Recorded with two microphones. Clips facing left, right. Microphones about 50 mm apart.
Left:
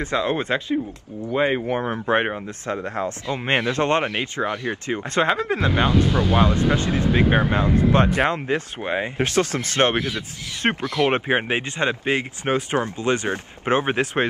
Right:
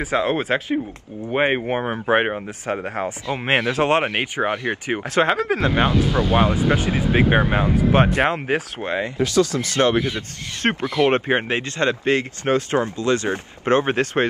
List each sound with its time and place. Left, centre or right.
0.1 s speech: centre
1.3 s speech: right
1.8 s speech: centre
3.4 s speech: centre
4.1 s speech: right
5.1 s speech: centre
8.1 s speech: centre
9.2 s speech: left
10.6 s speech: centre; by 13.3 s left
13.7 s speech: centre